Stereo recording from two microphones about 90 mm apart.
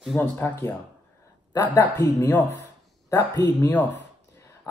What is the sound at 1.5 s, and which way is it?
Speech, 45° left (ahead or behind).